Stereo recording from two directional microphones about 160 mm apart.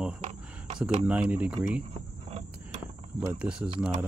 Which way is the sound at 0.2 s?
40° right (ahead or behind).